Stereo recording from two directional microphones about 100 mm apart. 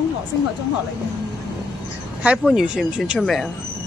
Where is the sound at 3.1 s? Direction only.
5° left (ahead or behind).